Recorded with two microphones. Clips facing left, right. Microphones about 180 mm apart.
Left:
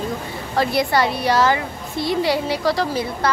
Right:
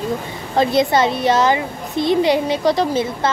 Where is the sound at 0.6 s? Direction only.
20° right (ahead or behind).